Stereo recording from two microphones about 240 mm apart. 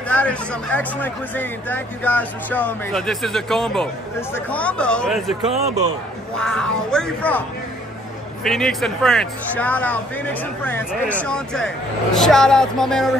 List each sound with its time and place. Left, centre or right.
0.1 s speech: centre
5.5 s speech: right
6.3 s speech: centre
8.5 s speech: centre
10.9 s speech: centre
11.2 s speech: centre